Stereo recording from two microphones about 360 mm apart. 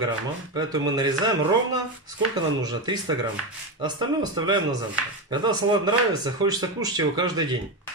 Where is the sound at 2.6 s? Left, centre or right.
Centre.